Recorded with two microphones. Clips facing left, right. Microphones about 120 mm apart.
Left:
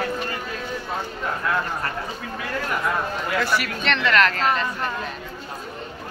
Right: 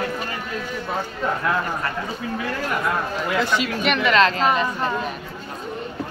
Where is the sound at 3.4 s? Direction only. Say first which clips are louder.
Right 3 dB; 20° right (ahead or behind).